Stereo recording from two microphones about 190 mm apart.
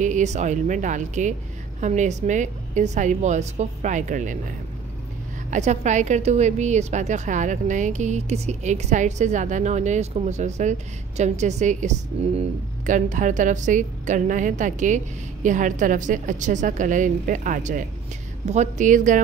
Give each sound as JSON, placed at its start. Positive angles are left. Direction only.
{"t": 0.0, "sound": "a woman's voice", "side_deg": -40}
{"t": 5.5, "sound": "a woman's voice", "side_deg": -40}